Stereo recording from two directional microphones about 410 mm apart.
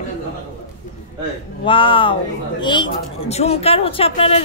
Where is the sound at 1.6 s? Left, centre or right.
Centre.